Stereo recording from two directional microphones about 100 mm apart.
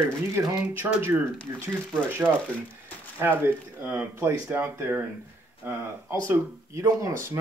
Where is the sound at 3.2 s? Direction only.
20° right (ahead or behind).